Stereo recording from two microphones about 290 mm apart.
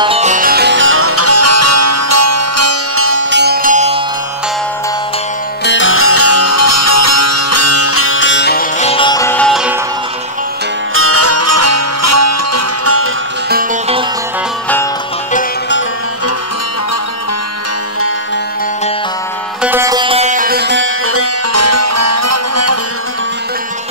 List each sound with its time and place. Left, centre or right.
0.0 s music: right
5.7 s music: left; by 9.8 s centre
11.0 s music: right
13.5 s music: right
19.6 s music: centre; by 22.8 s right